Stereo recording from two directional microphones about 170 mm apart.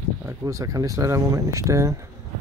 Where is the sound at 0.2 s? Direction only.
15° right (ahead or behind).